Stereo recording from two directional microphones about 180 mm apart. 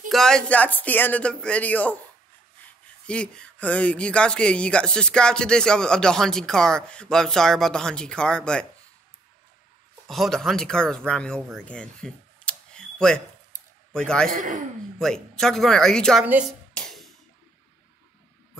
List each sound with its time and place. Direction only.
0.1 s speech: 5° left (ahead or behind)
3.1 s a man's voice: 5° left (ahead or behind)
10.0 s a man's voice: centre (ahead or behind)
14.3 s speech: 45° right (ahead or behind)
15.0 s a man's voice: 5° left (ahead or behind)
16.7 s music: centre (ahead or behind)